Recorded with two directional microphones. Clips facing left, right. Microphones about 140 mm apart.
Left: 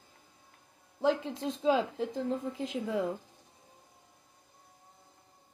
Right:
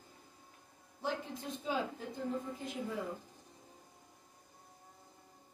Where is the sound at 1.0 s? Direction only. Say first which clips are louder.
Left 10 dB; 90° left.